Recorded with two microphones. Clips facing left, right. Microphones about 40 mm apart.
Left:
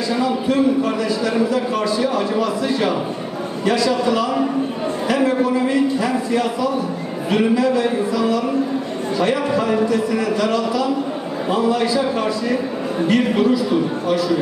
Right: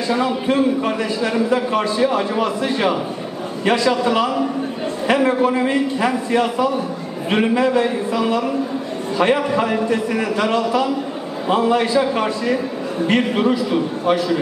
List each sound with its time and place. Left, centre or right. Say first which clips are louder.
0.1 s a man's voice: right 1 dB; right